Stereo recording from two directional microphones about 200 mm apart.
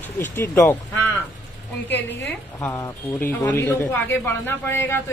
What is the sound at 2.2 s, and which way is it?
A woman's voice, 10° left (ahead or behind).